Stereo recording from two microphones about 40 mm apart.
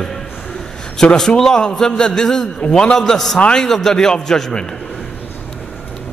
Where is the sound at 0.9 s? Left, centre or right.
Centre.